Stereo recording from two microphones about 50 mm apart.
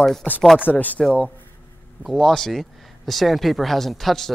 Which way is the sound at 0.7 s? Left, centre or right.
Left.